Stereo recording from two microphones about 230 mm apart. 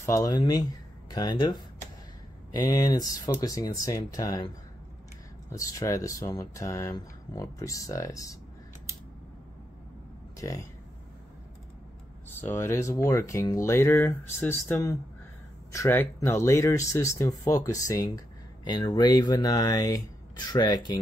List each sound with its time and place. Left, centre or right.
0.0 s speech: centre
5.5 s speech: centre
10.4 s speech: centre
12.4 s speech: centre